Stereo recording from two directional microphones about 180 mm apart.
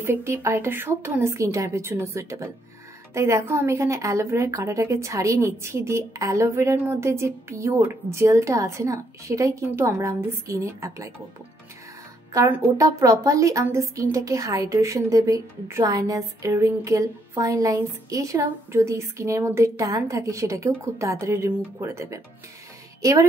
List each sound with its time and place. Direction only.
0.0 s a woman's voice: 15° right (ahead or behind)
12.4 s a woman's voice: 15° right (ahead or behind)